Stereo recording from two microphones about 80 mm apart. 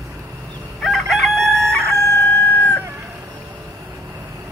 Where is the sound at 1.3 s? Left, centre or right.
Right.